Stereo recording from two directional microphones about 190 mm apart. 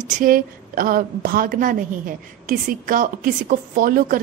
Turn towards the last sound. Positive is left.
turn(degrees=-45)  # may be behind; listen again after turning